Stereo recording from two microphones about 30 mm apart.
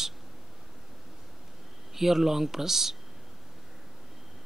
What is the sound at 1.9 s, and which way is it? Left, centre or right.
Speech, centre.